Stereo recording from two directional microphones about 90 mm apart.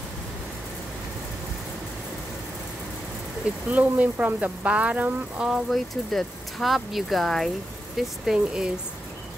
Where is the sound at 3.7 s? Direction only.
15° right (ahead or behind).